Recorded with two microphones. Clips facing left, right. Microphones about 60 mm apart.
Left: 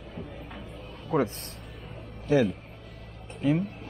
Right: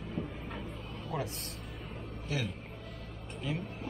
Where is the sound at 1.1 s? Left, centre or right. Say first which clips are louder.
Left 11 dB; left.